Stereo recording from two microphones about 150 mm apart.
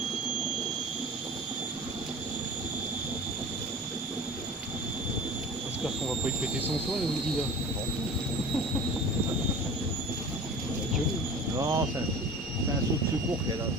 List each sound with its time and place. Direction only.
11.5 s vehicle: 20° right (ahead or behind)